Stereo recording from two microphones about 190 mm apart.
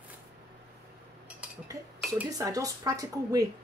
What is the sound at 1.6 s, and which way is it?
Speech, 15° right (ahead or behind).